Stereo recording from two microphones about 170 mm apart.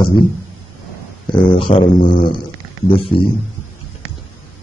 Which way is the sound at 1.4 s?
30° left (ahead or behind).